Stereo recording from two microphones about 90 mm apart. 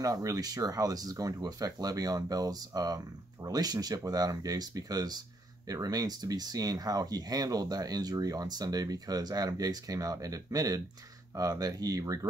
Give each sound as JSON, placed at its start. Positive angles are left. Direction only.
{"t": 0.0, "sound": "speech", "side_deg": -45}